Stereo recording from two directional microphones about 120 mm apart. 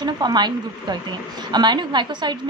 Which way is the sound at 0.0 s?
35° right (ahead or behind).